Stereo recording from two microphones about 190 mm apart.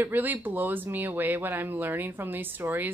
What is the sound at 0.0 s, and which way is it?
Speech, 10° right (ahead or behind).